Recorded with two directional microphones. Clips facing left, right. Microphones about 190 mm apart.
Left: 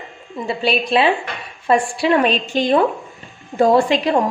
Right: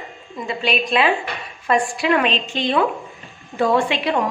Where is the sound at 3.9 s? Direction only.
40° left (ahead or behind).